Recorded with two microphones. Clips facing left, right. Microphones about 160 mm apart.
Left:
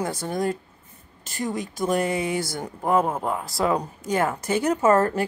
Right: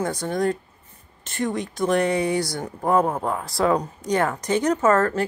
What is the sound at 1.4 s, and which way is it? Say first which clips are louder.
Speech: right 2 dB; 5° left (ahead or behind).